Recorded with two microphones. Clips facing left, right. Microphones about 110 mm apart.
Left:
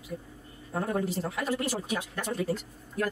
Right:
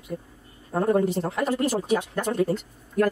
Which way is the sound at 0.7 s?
50° right (ahead or behind).